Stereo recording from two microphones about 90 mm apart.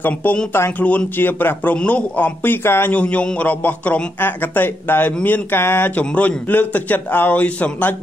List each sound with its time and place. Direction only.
0.0 s a man's voice: 20° left (ahead or behind)